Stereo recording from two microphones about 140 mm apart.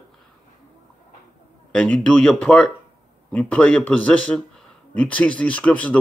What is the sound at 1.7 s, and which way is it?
Speech, 5° left (ahead or behind).